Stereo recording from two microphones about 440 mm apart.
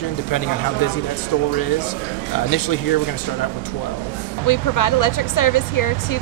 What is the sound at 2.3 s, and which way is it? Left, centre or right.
Speech, left.